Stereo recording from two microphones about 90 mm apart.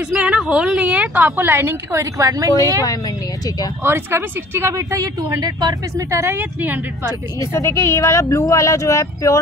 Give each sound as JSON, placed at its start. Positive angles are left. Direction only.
{"t": 0.1, "sound": "a woman's voice", "side_deg": -10}
{"t": 3.8, "sound": "speech", "side_deg": -25}
{"t": 6.0, "sound": "speech", "side_deg": -30}
{"t": 7.3, "sound": "speech", "side_deg": 30}